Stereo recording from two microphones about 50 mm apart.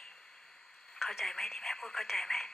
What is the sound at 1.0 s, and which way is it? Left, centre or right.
Speech, centre.